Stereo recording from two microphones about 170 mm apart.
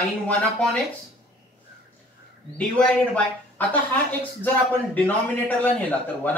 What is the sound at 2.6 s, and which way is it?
Speech, 5° left (ahead or behind).